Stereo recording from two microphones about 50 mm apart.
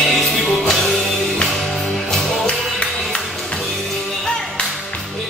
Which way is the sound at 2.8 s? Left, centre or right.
Left.